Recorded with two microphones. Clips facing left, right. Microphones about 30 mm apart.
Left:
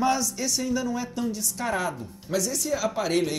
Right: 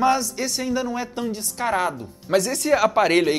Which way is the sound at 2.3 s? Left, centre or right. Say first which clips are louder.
Right 8 dB; right.